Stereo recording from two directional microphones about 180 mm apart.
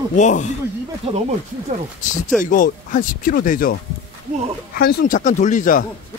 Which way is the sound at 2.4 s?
45° left (ahead or behind).